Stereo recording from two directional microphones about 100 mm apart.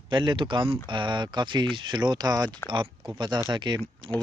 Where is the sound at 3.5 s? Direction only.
50° right (ahead or behind).